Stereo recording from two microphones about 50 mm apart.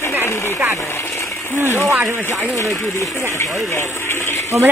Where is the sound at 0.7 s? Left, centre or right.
Left.